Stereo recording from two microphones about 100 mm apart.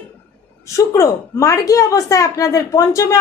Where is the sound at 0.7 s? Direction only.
30° left (ahead or behind).